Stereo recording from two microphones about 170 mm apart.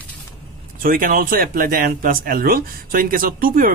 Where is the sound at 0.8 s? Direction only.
55° right (ahead or behind).